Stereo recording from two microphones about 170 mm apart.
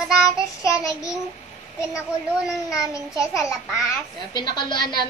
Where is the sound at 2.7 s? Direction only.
20° left (ahead or behind).